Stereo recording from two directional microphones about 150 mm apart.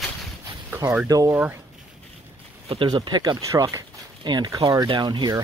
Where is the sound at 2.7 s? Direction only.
35° right (ahead or behind).